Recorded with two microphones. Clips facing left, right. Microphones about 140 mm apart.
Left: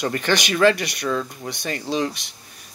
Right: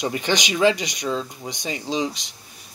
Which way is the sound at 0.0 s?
15° right (ahead or behind).